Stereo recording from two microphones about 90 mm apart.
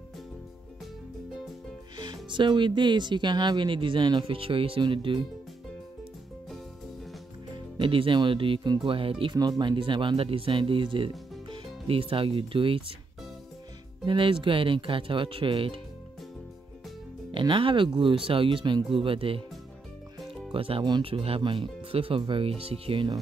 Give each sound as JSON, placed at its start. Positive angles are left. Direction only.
{"t": 2.0, "sound": "speech", "side_deg": -55}
{"t": 4.8, "sound": "speech", "side_deg": -65}
{"t": 7.5, "sound": "music", "side_deg": -65}
{"t": 8.2, "sound": "speech", "side_deg": -70}
{"t": 9.4, "sound": "speech", "side_deg": -50}
{"t": 14.0, "sound": "speech", "side_deg": -70}
{"t": 17.3, "sound": "speech", "side_deg": -70}
{"t": 20.5, "sound": "speech", "side_deg": -90}
{"t": 21.4, "sound": "speech", "side_deg": -80}